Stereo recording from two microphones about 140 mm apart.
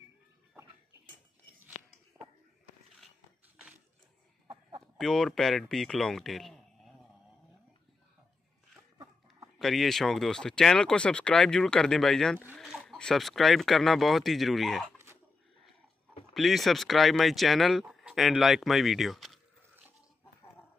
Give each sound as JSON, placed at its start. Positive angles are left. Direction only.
{"t": 2.1, "sound": "a sound", "side_deg": -15}
{"t": 4.5, "sound": "chicken", "side_deg": -30}
{"t": 4.9, "sound": "speech", "side_deg": 5}
{"t": 9.6, "sound": "speech", "side_deg": 0}
{"t": 16.3, "sound": "speech", "side_deg": 0}